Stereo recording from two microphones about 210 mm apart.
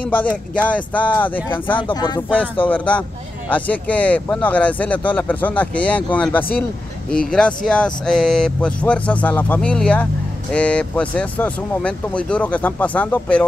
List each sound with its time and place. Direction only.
0.6 s speech: 5° left (ahead or behind)
1.8 s speech: 20° left (ahead or behind)
2.7 s speech: 5° left (ahead or behind)